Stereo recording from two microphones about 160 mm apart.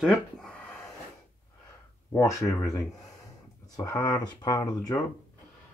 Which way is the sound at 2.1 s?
20° left (ahead or behind).